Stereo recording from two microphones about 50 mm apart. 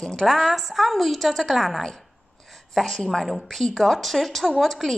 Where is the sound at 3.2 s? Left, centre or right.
Centre.